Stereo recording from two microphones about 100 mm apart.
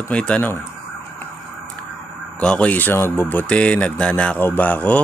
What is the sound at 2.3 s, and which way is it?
Speech, 10° left (ahead or behind).